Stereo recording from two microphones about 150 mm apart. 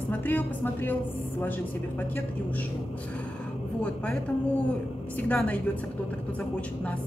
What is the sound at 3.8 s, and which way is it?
A woman's voice, 10° left (ahead or behind).